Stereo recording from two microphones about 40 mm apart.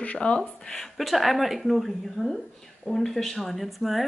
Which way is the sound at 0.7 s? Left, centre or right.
Centre.